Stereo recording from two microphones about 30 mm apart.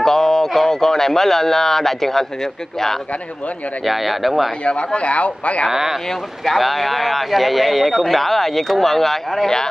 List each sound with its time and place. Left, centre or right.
0.0 s a sound: centre
0.7 s speech: centre
3.8 s speech: centre
4.6 s speech: left
5.7 s speech: centre
6.0 s speech: centre